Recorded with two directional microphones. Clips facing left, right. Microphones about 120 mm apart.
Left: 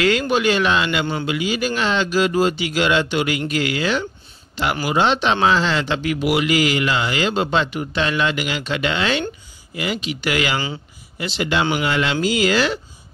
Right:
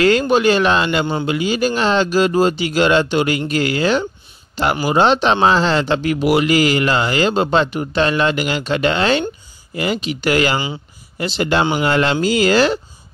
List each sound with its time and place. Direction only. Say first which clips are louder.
0.0 s speech: right 4 dB; 35° right (ahead or behind)